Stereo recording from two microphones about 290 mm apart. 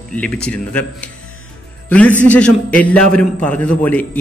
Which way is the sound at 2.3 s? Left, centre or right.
Centre.